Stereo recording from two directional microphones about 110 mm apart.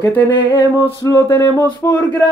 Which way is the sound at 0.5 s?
25° left (ahead or behind).